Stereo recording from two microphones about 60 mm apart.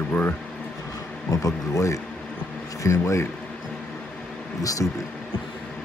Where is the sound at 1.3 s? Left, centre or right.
Left.